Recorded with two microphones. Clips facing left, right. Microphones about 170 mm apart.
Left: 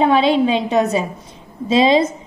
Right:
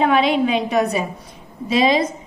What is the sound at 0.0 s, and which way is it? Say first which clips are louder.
A woman's voice: left 2 dB; 30° left (ahead or behind).